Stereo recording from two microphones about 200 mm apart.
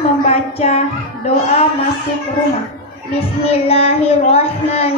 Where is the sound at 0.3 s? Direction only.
30° left (ahead or behind).